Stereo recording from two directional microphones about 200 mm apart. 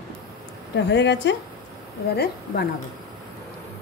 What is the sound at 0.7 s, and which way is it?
Speech, 60° left (ahead or behind).